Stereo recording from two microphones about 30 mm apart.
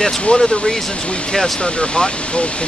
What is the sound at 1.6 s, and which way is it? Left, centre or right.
Speech, left.